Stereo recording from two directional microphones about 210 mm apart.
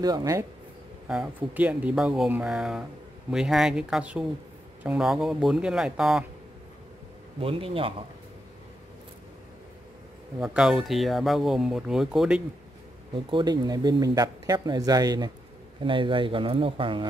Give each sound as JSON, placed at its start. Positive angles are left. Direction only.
{"t": 0.0, "sound": "speech", "side_deg": -15}
{"t": 1.0, "sound": "speech", "side_deg": -5}
{"t": 7.3, "sound": "speech", "side_deg": -25}
{"t": 10.4, "sound": "speech", "side_deg": -5}
{"t": 13.1, "sound": "speech", "side_deg": -20}